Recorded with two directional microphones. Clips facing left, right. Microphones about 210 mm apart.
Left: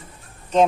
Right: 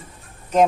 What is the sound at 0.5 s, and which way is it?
Speech, 10° right (ahead or behind).